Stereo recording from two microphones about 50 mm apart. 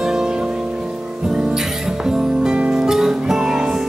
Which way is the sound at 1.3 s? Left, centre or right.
Centre.